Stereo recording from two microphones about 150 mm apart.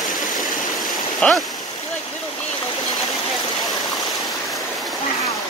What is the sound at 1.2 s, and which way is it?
Speech, 10° left (ahead or behind).